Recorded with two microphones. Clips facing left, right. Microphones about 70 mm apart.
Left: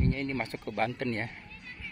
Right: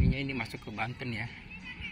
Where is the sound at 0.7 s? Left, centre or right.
Left.